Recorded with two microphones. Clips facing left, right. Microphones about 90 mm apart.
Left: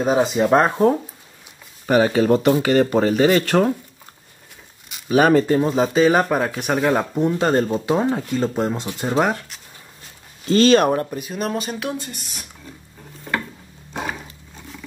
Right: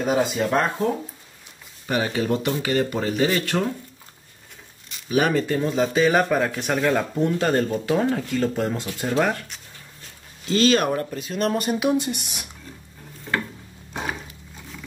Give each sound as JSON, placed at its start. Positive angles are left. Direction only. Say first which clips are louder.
{"t": 0.0, "sound": "speech", "louder": "left 4 dB", "side_deg": 25}
{"t": 0.6, "sound": "speech", "louder": "left 5 dB", "side_deg": 35}
{"t": 1.9, "sound": "speech", "louder": "left 7 dB", "side_deg": 50}
{"t": 5.0, "sound": "speech", "louder": "left 6 dB", "side_deg": 50}
{"t": 5.5, "sound": "speech", "louder": "left 4 dB", "side_deg": 35}
{"t": 5.9, "sound": "speech", "louder": "left 2 dB", "side_deg": 20}
{"t": 10.4, "sound": "speech", "louder": "left 5 dB", "side_deg": 40}
{"t": 11.1, "sound": "speech", "louder": "right 1 dB", "side_deg": 10}
{"t": 13.3, "sound": "a sound", "louder": "left 1 dB", "side_deg": 5}